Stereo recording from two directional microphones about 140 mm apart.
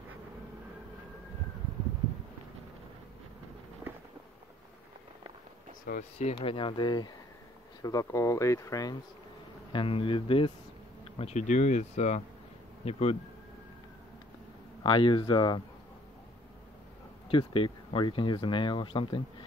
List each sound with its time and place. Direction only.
5.9 s speech: 75° left (ahead or behind)
6.3 s speech: 40° left (ahead or behind)
9.7 s speech: 40° left (ahead or behind)
11.1 s speech: 55° left (ahead or behind)
14.8 s speech: 35° left (ahead or behind)
17.3 s speech: 40° left (ahead or behind)